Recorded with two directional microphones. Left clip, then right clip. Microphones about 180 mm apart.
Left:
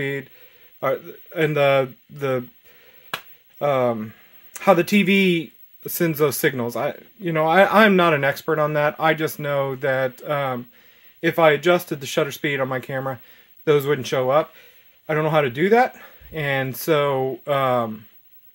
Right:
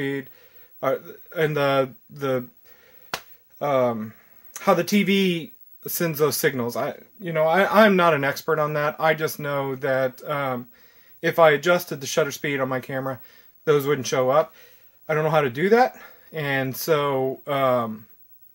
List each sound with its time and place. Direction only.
0.7 s speech: 40° left (ahead or behind)
7.2 s speech: 55° left (ahead or behind)